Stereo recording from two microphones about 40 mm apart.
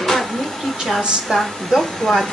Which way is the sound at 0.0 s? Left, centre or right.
Centre.